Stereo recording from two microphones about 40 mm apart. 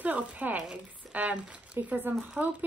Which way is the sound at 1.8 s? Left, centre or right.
Right.